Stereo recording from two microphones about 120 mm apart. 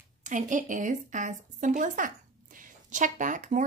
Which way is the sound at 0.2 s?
90° right.